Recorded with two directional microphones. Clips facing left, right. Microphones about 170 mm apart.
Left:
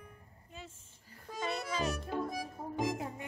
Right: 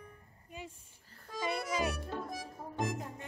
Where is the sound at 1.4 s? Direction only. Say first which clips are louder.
Right 1 dB; 10° right (ahead or behind).